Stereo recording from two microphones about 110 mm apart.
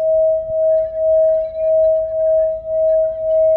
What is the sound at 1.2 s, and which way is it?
Singing bowl, 20° right (ahead or behind).